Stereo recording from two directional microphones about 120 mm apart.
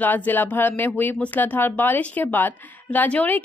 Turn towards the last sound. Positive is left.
turn(degrees=15)  # may be behind; listen again after turning